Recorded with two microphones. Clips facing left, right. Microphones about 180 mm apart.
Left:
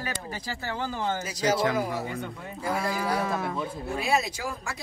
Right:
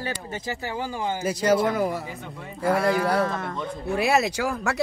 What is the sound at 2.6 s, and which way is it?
Speech, 65° right (ahead or behind).